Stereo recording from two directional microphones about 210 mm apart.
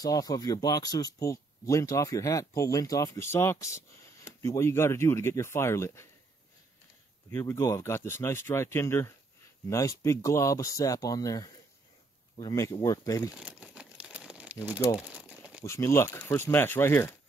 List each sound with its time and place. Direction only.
0.0 s speech: 15° left (ahead or behind)
7.2 s speech: 10° left (ahead or behind)
13.3 s crumpling: 5° right (ahead or behind)
15.6 s speech: 15° left (ahead or behind)